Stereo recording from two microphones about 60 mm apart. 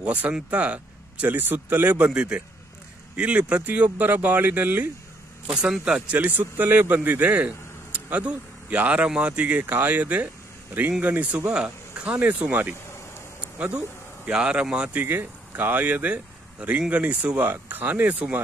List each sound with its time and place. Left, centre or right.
0.0 s a man's voice: right
2.0 s a man's voice: centre
5.5 s a man's voice: centre
13.4 s a sound: right
14.2 s a man's voice: centre
15.0 s a man's voice: right
17.4 s a man's voice: right